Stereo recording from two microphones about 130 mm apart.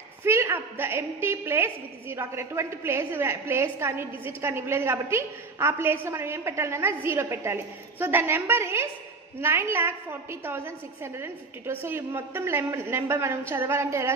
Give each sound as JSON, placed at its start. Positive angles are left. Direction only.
{"t": 0.2, "sound": "a woman's voice", "side_deg": -20}